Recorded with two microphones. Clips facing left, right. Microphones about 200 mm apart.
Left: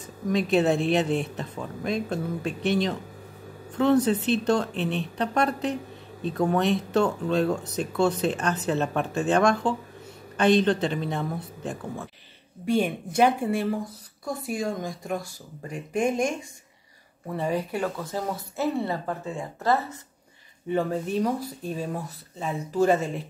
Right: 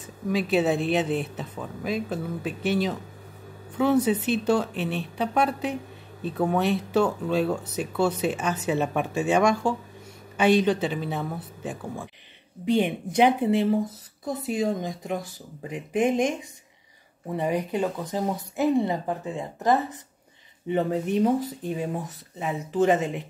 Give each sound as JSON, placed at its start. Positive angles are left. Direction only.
{"t": 0.0, "sound": "speech", "side_deg": -5}
{"t": 12.6, "sound": "speech", "side_deg": -20}